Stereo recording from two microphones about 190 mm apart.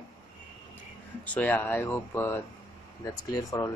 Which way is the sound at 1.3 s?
10° left (ahead or behind).